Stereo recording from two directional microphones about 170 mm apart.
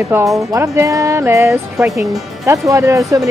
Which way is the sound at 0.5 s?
15° right (ahead or behind).